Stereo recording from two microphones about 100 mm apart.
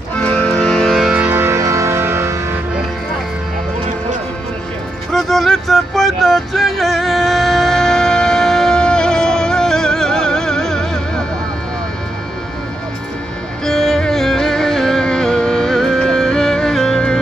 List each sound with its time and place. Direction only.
0.1 s music: 10° left (ahead or behind)
1.1 s music: 15° right (ahead or behind)
1.4 s music: 30° right (ahead or behind)
5.1 s music: centre (ahead or behind)
13.7 s music: 5° left (ahead or behind)